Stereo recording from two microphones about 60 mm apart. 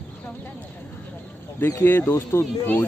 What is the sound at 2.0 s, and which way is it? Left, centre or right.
Speech, left.